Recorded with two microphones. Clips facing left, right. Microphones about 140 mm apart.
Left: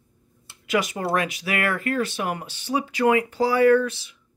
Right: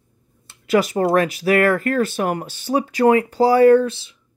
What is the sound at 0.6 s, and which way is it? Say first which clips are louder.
Speech: right 7 dB; 35° right (ahead or behind).